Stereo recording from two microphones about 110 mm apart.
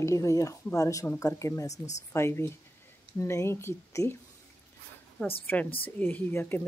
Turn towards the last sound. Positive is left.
turn(degrees=20)  # may be behind; listen again after turning